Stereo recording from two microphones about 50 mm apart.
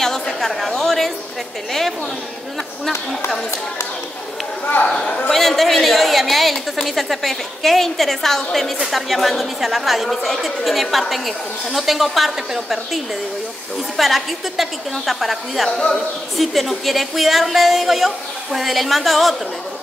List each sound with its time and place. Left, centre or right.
0.0 s chatter: centre
1.7 s a woman's voice: centre
5.0 s a man's voice: left
5.3 s a woman's voice: centre